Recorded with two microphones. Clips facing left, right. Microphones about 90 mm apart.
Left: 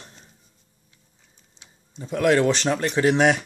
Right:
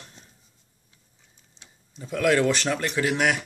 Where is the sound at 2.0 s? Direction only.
25° left (ahead or behind).